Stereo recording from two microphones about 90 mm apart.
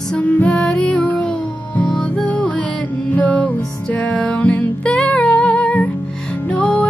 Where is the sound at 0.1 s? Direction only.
15° left (ahead or behind).